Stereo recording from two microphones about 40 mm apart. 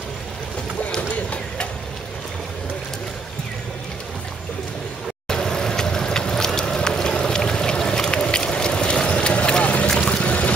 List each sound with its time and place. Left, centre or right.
5.3 s vehicle: centre
8.9 s run: left
9.8 s vehicle: centre
10.1 s a sound: left